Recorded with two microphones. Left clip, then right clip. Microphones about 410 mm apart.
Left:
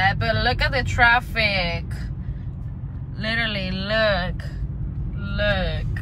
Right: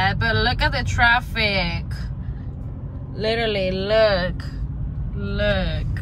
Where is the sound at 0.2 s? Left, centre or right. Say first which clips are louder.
Right 1 dB; centre.